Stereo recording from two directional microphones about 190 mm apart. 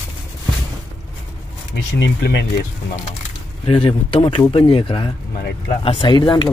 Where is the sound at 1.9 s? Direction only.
70° left (ahead or behind).